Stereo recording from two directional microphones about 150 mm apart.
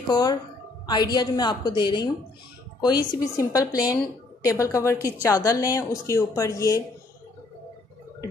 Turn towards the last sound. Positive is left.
turn(degrees=20)  # may be behind; listen again after turning